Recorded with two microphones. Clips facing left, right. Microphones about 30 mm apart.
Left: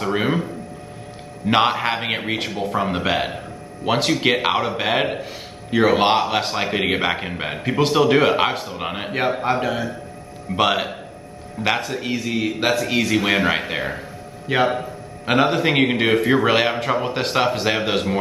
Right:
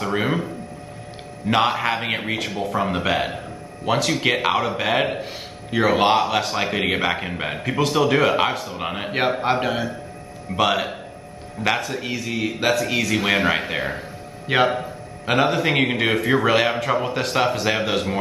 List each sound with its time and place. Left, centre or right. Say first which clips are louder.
0.0 s speech: left 1 dB; centre
1.6 s a man's voice: left 1 dB; centre
3.8 s a man's voice: left 2 dB; centre
5.9 s a man's voice: even; centre
6.5 s a man's voice: left 1 dB; centre
9.4 s a man's voice: even; centre
10.5 s a man's voice: left 1 dB; centre
16.4 s a man's voice: left 1 dB; centre